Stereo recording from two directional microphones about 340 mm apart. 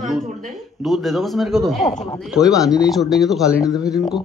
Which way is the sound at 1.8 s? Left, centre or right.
Centre.